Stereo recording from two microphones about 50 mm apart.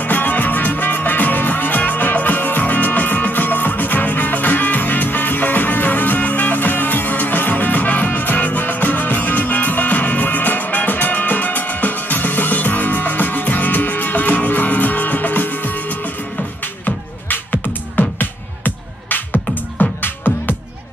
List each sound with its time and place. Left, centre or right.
0.0 s music: left